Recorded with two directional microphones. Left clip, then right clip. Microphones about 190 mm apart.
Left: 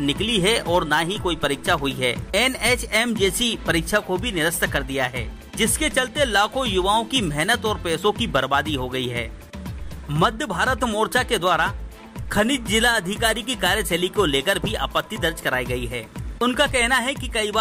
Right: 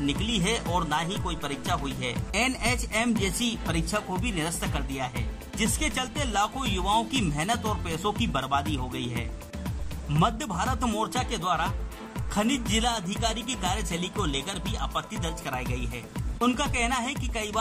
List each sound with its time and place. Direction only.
0.0 s speech: 15° left (ahead or behind)